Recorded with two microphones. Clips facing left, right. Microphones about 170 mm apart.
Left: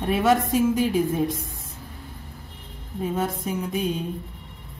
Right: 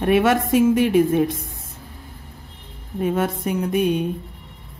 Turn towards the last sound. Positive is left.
turn(degrees=-65)  # may be behind; listen again after turning